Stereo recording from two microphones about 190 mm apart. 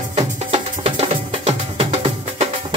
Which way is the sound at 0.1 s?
30° right (ahead or behind).